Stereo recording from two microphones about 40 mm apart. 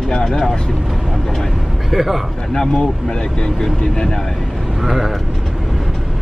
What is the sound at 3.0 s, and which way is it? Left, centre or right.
Speech, centre.